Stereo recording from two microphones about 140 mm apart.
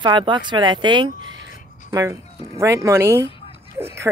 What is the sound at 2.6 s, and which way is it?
Speech, 20° right (ahead or behind).